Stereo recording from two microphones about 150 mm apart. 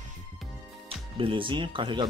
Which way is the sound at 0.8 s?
35° right (ahead or behind).